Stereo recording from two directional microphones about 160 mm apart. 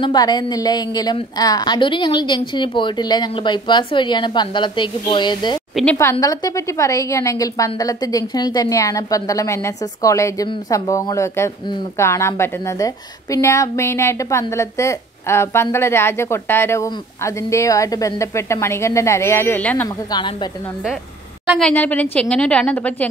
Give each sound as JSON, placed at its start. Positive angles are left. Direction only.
{"t": 0.0, "sound": "a woman's voice", "side_deg": 25}
{"t": 20.1, "sound": "a woman's voice", "side_deg": 30}
{"t": 21.5, "sound": "a woman's voice", "side_deg": 10}